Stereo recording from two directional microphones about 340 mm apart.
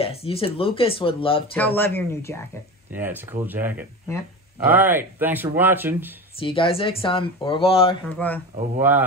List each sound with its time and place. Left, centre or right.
0.0 s speech: centre
1.5 s speech: centre
2.9 s speech: centre
6.4 s speech: centre
8.1 s speech: centre
8.7 s speech: centre